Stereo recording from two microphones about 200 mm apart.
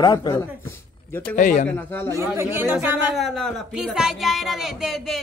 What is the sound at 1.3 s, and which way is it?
Speech, 40° left (ahead or behind).